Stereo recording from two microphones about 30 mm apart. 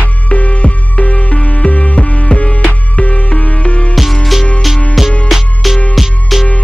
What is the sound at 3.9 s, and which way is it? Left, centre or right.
Music, centre.